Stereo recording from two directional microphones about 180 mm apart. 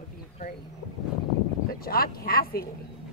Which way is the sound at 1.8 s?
55° left (ahead or behind).